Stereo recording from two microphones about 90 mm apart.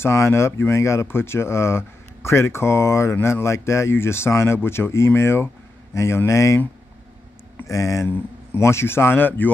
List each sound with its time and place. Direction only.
0.0 s speech: 30° left (ahead or behind)
7.6 s speech: 40° left (ahead or behind)
8.1 s speech: 25° left (ahead or behind)